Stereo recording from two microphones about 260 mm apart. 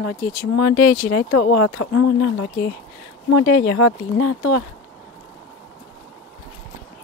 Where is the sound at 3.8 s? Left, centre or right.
Left.